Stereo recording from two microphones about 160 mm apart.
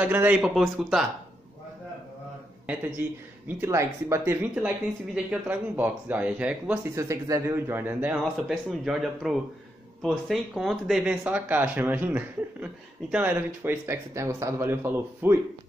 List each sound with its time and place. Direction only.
0.0 s speech: 10° right (ahead or behind)
3.4 s speech: 15° right (ahead or behind)